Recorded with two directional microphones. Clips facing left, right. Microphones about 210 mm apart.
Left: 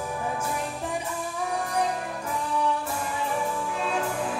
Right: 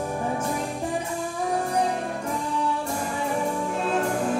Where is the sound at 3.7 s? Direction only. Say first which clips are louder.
Right 4 dB; 40° right (ahead or behind).